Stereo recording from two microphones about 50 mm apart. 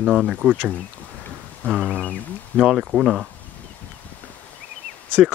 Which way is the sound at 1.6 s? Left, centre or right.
Left.